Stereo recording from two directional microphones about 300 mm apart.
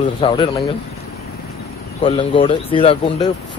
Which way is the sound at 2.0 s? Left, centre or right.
Centre.